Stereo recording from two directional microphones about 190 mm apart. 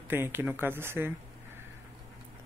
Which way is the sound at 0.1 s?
10° right (ahead or behind).